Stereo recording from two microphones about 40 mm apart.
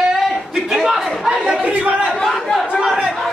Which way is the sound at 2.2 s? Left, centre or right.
Centre.